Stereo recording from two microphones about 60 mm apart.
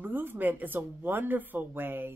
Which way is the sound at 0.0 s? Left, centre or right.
Right.